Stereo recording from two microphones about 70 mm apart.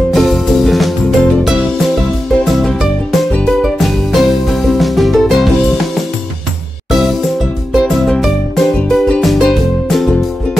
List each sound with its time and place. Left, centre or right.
0.1 s music: centre
7.7 s music: centre